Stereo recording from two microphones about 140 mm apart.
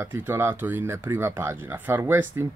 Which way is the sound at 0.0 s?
15° right (ahead or behind).